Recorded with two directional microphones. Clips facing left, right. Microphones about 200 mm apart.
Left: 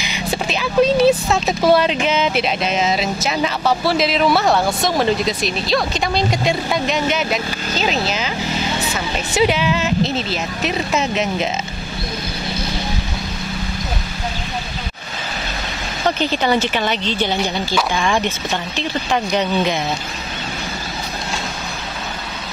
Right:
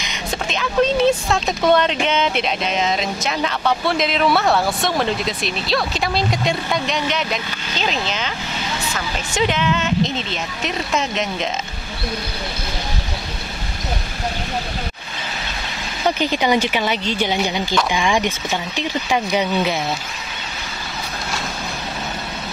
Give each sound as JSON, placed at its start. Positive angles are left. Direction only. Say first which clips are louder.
{"t": 0.0, "sound": "speech", "louder": "left 3 dB", "side_deg": 10}
{"t": 8.9, "sound": "speech", "louder": "left 3 dB", "side_deg": 10}
{"t": 16.1, "sound": "speech", "louder": "even", "side_deg": -10}